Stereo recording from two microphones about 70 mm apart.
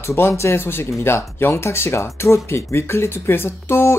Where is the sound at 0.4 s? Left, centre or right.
Left.